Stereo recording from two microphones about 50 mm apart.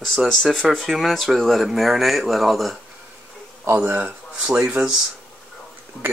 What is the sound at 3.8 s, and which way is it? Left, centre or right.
Speech, right.